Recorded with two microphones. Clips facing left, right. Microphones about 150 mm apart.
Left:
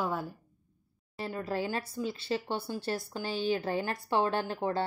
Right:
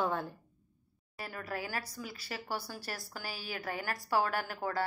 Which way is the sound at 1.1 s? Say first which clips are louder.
Left 7 dB; 25° left (ahead or behind).